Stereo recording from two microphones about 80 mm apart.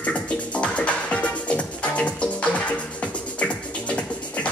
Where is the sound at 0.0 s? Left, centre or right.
Centre.